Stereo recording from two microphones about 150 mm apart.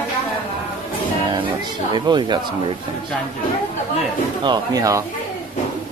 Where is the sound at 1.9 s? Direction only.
30° right (ahead or behind).